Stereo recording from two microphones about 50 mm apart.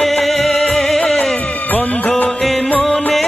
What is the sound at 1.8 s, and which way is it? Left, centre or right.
Music, left.